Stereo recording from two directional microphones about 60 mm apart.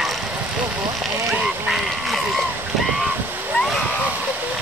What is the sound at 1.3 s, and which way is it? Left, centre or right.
Duck, centre.